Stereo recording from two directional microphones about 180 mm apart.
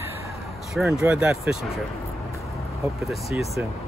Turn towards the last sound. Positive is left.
turn(degrees=0)  # may be behind; listen again after turning